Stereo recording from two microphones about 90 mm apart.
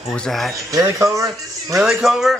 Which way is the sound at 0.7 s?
35° right (ahead or behind).